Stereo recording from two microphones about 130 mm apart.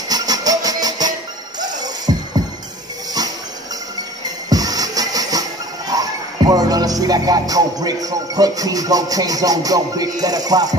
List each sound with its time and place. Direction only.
0.1 s music: 30° right (ahead or behind)
4.5 s music: 30° right (ahead or behind)